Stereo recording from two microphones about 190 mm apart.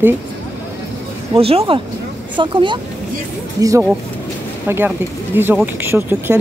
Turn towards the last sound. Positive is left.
turn(degrees=-15)  # may be behind; listen again after turning